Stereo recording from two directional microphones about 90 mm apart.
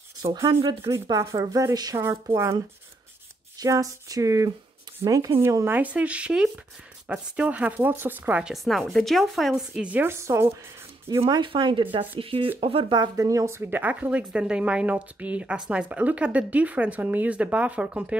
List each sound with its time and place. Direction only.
0.9 s speech: 70° right (ahead or behind)
1.2 s a sound: 40° right (ahead or behind)
2.0 s a woman's voice: 30° right (ahead or behind)
3.5 s a sound: 40° right (ahead or behind)
5.8 s speech: 15° right (ahead or behind)
8.6 s speech: centre (ahead or behind)
9.8 s speech: 15° right (ahead or behind)
10.0 s a woman's voice: 30° right (ahead or behind)
11.2 s speech: 60° right (ahead or behind)
12.2 s speech: 90° right
13.1 s speech: 40° right (ahead or behind); by 18.0 s 15° right (ahead or behind)